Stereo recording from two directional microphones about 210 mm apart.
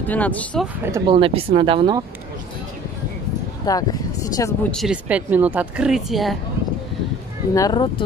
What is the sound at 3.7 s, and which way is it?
Speech, 15° left (ahead or behind).